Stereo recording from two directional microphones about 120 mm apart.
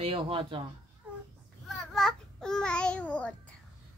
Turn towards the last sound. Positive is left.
turn(degrees=10)  # may be behind; listen again after turning